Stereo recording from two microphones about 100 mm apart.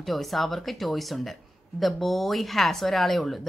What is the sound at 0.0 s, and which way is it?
Speech, centre (ahead or behind).